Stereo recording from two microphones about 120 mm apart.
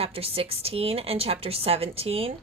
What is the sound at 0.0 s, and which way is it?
A woman's voice, 55° right (ahead or behind).